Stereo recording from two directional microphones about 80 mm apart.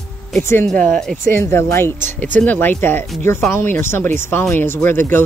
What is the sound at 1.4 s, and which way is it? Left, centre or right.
Speech, left.